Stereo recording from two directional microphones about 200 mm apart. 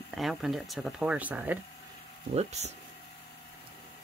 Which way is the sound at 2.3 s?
35° right (ahead or behind).